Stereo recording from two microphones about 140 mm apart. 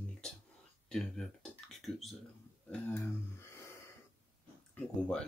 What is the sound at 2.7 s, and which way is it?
Speech, 15° left (ahead or behind).